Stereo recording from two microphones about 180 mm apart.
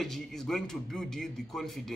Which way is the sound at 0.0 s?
Centre (ahead or behind).